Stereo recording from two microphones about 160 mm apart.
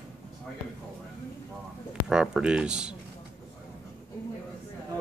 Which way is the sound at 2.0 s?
5° right (ahead or behind).